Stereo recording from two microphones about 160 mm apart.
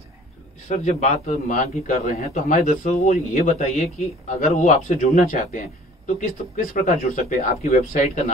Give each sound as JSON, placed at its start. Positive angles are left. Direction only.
{"t": 0.7, "sound": "a man's voice", "side_deg": 50}